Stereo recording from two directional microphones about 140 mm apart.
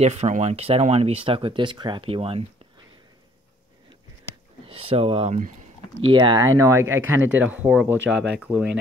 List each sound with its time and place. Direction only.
0.0 s speech: 55° right (ahead or behind)
4.6 s speech: 45° right (ahead or behind)
6.4 s speech: 20° right (ahead or behind)